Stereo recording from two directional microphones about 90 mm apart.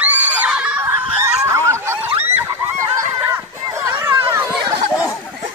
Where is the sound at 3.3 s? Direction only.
30° right (ahead or behind).